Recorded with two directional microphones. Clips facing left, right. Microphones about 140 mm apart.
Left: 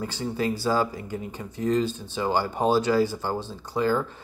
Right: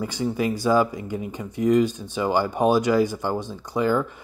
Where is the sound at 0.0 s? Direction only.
15° right (ahead or behind).